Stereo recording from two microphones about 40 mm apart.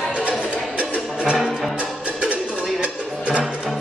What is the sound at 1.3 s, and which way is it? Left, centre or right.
Music, centre.